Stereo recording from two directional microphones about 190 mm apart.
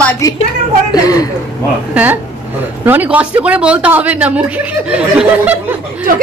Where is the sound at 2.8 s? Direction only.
10° right (ahead or behind).